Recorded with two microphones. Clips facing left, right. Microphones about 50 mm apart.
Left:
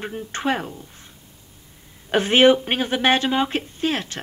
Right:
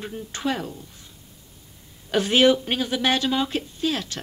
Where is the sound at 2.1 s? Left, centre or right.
Left.